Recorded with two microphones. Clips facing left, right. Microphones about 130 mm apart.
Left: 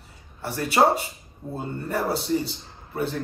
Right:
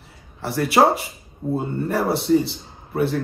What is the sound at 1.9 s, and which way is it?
A man's voice, 65° right (ahead or behind).